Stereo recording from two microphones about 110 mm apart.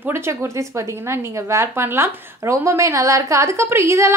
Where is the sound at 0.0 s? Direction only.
20° right (ahead or behind).